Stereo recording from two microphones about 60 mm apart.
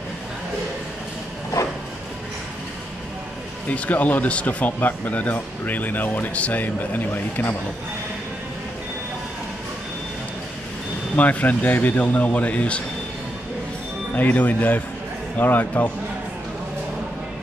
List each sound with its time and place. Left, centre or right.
3.6 s speech: left
11.1 s speech: left
14.1 s a man's voice: left